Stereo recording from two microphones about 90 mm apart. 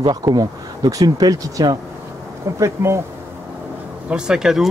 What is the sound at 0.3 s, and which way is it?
Speech, 45° right (ahead or behind).